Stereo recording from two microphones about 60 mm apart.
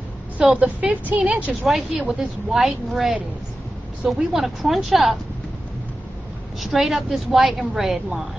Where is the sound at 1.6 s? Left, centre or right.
Centre.